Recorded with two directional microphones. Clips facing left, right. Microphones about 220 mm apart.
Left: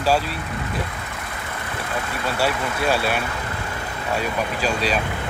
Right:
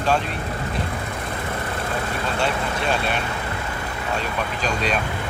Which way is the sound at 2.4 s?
5° left (ahead or behind).